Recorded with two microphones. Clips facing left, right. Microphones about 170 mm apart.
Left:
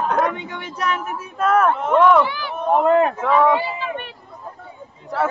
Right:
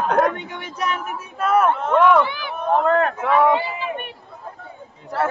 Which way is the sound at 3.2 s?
10° right (ahead or behind).